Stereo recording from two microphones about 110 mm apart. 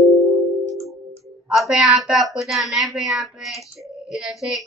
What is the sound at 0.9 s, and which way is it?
Music, 30° right (ahead or behind).